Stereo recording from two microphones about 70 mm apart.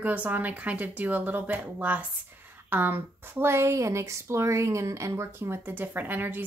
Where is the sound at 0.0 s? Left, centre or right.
Right.